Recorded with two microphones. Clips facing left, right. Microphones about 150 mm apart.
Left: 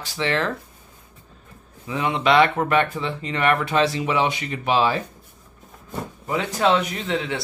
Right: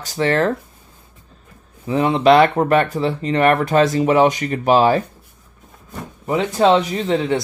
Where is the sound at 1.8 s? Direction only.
40° right (ahead or behind).